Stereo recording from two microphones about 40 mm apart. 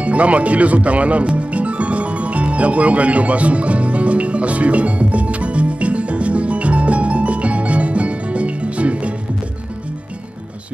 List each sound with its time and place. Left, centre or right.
0.0 s speech: right
1.3 s music: right